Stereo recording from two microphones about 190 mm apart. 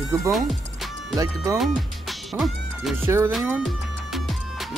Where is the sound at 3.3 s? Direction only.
Centre (ahead or behind).